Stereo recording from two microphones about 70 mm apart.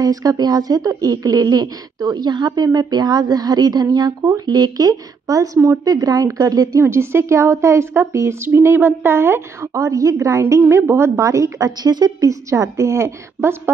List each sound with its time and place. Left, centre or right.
0.0 s speech: right
4.5 s speech: right
6.8 s a woman's voice: right
11.2 s a woman's voice: right